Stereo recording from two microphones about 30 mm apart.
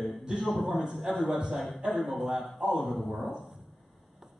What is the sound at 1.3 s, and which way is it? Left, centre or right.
Speech, right.